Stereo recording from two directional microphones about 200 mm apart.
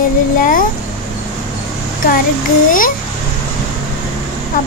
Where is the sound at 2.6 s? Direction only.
45° left (ahead or behind).